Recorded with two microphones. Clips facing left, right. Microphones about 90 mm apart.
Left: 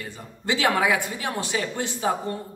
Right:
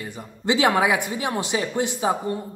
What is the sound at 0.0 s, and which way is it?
Speech, 20° right (ahead or behind).